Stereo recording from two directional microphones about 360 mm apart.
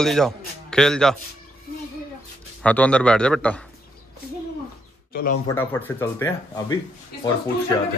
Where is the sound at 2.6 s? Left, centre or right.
Centre.